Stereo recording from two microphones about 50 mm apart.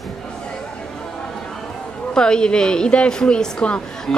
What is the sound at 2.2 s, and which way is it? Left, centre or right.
A woman's voice, centre.